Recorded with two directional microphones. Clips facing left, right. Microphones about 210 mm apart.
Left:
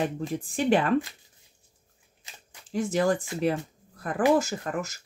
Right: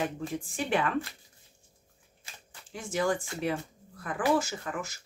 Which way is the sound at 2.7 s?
40° left (ahead or behind).